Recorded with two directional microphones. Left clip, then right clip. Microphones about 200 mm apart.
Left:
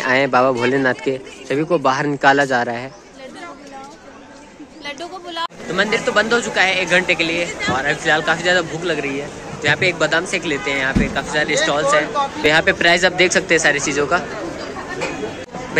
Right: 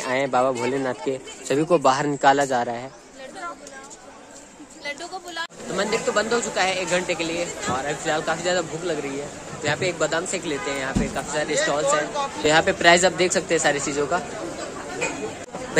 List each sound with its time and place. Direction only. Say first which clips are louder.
0.0 s speech: left 6 dB; centre (ahead or behind)
1.5 s speech: left 2 dB; 25° right (ahead or behind); by 2.9 s 5° right (ahead or behind)
4.8 s a sound: left 3 dB; 55° left (ahead or behind)
5.8 s speech: left 6 dB; 10° right (ahead or behind)